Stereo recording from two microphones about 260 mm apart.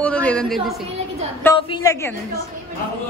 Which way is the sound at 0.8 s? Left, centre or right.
Right.